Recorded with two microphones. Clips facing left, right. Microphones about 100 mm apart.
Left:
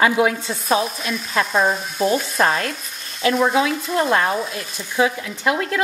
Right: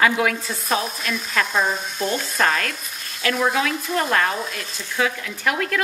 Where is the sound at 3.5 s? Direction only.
30° left (ahead or behind).